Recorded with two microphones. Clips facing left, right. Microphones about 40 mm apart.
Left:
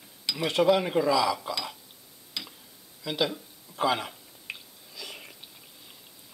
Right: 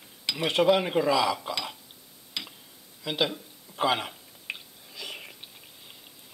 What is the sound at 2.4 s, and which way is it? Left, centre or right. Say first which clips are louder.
Tick-tock: right 2 dB; right.